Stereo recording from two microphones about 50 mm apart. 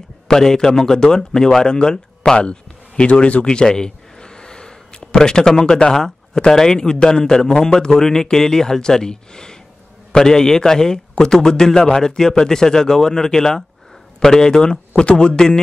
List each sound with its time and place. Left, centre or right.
0.3 s speech: centre; by 3.4 s left
3.4 s a man's voice: centre